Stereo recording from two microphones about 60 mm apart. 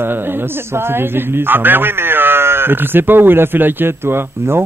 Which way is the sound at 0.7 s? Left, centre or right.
Right.